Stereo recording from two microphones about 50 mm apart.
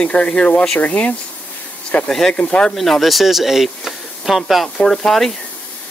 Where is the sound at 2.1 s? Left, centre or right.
Centre.